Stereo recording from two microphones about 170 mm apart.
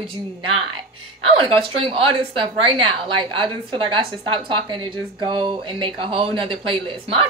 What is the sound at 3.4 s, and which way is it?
A woman's voice, 30° right (ahead or behind).